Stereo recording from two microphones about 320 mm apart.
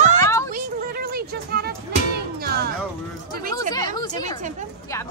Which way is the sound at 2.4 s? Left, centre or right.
Right.